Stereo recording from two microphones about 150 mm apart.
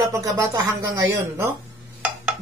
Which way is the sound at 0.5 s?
20° right (ahead or behind).